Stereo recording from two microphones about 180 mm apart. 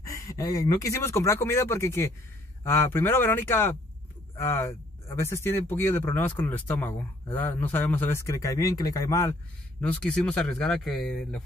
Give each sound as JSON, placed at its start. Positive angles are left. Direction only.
{"t": 0.0, "sound": "speech", "side_deg": 20}